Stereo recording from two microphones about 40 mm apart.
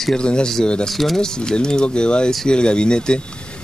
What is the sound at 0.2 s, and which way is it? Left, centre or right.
Speech, left.